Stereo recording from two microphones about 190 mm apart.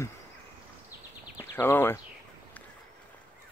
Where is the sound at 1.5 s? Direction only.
10° left (ahead or behind).